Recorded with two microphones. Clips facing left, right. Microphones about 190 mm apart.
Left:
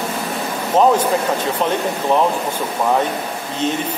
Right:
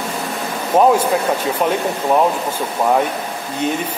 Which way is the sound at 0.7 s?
10° right (ahead or behind).